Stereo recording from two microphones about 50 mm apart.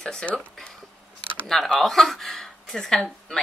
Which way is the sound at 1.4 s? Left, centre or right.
Centre.